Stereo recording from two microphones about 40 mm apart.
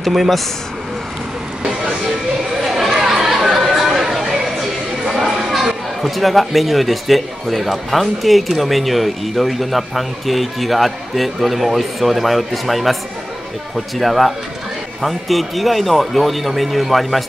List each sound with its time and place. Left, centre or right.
0.0 s a man's voice: centre
1.6 s vehicle: right
2.6 s chatter: centre
3.9 s a sound: centre
4.2 s speech: centre
13.9 s a man's voice: centre